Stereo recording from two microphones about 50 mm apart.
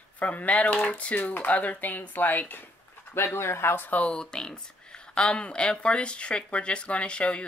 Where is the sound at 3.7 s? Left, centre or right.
Left.